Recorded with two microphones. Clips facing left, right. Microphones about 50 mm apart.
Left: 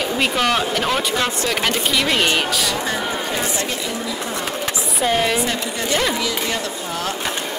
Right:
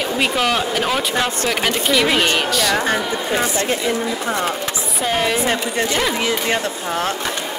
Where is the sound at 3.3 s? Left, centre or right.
Right.